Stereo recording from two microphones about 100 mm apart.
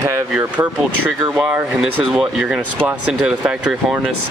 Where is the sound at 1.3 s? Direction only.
5° right (ahead or behind).